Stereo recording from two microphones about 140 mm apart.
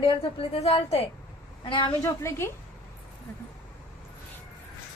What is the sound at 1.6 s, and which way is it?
Speech, 35° left (ahead or behind).